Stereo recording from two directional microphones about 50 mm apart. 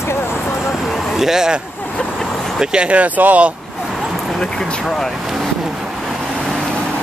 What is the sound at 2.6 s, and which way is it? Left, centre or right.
Speech, centre.